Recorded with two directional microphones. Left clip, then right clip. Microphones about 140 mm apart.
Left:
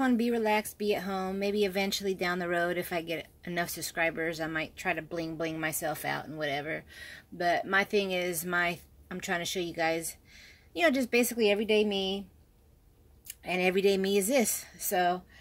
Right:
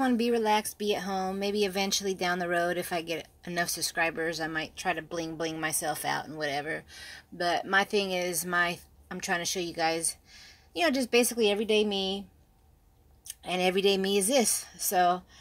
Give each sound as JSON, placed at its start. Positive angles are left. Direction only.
{"t": 0.0, "sound": "a woman's voice", "side_deg": 20}
{"t": 13.4, "sound": "speech", "side_deg": 15}